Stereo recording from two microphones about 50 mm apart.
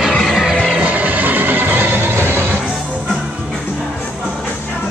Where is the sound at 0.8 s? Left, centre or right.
Right.